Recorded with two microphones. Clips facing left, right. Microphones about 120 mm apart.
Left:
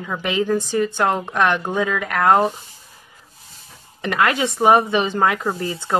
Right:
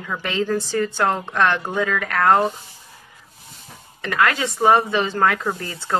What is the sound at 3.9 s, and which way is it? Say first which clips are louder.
Speech: left 1 dB; 20° left (ahead or behind).